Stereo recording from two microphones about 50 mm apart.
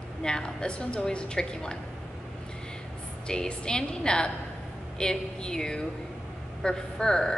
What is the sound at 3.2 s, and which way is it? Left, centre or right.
A woman's voice, centre.